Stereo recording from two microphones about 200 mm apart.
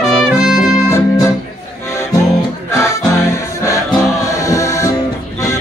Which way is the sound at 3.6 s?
15° left (ahead or behind).